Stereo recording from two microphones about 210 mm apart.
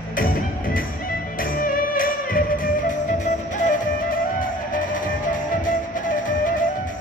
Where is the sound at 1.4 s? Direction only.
40° left (ahead or behind).